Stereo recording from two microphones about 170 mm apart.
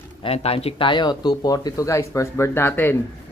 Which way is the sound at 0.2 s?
35° left (ahead or behind).